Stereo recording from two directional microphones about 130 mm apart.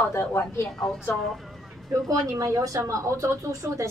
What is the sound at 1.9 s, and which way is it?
A woman's voice, 25° right (ahead or behind).